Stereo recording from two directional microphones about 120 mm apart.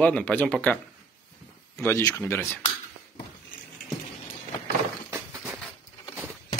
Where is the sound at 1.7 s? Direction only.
20° left (ahead or behind).